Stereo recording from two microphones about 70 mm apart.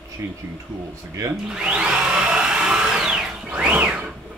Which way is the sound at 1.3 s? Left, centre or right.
Centre.